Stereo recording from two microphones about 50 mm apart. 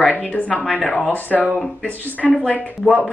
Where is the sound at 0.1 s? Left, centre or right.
Left.